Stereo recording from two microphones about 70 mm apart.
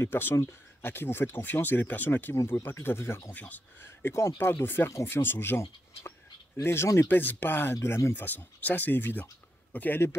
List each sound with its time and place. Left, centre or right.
0.0 s speech: left
2.3 s speech: left
2.6 s speech: left
3.3 s speech: left
3.8 s speech: left
7.7 s speech: left